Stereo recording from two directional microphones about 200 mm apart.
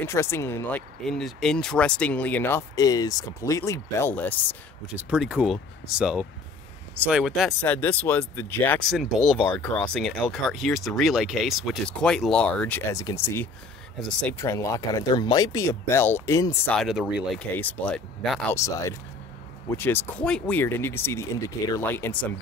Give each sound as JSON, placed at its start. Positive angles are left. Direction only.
{"t": 0.0, "sound": "speech", "side_deg": 15}
{"t": 4.8, "sound": "speech", "side_deg": -5}
{"t": 7.6, "sound": "speech", "side_deg": 10}
{"t": 16.7, "sound": "speech", "side_deg": 0}
{"t": 18.5, "sound": "speech", "side_deg": 15}